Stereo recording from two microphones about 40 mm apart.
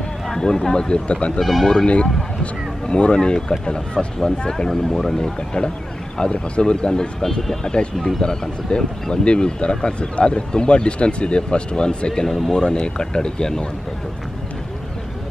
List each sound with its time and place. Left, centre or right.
0.3 s speech: centre
1.4 s speech: centre
2.4 s speech: left
12.1 s speech: centre
12.6 s speech: left